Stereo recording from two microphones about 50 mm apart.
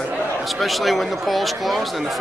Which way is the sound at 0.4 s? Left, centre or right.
Centre.